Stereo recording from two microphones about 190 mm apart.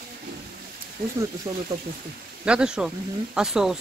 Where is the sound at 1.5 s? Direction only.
20° right (ahead or behind).